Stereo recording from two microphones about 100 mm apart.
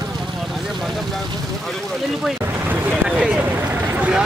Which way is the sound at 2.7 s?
15° right (ahead or behind).